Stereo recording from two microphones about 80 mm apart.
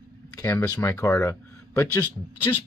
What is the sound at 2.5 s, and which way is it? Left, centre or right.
Speech, left.